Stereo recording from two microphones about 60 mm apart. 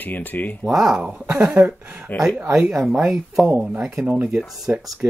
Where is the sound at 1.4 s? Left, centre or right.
Right.